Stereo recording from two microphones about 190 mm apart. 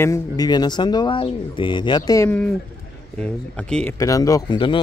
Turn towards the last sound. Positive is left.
turn(degrees=25)  # may be behind; listen again after turning